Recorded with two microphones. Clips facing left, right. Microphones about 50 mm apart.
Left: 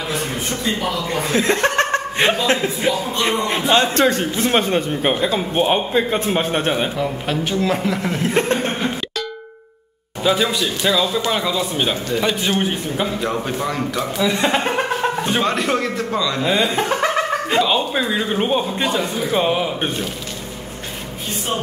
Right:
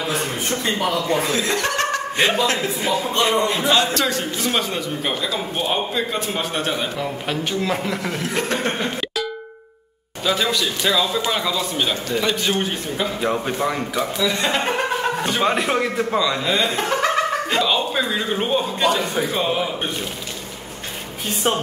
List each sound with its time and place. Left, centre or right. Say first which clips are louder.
0.1 s a sound: even; centre
1.3 s chuckle: left 4 dB; left
2.4 s a man's voice: left 3 dB; left
7.0 s a man's voice: left 3 dB; centre
8.2 s a man's voice: left 7 dB; left
8.7 s a sound: left 1 dB; centre
10.2 s a man's voice: left 3 dB; centre
13.2 s a man's voice: right 1 dB; centre
14.1 s a man's voice: left 4 dB; centre
14.6 s chuckle: left 1 dB; centre
15.4 s a man's voice: even; centre
16.4 s a man's voice: left 2 dB; centre
18.6 s a man's voice: even; left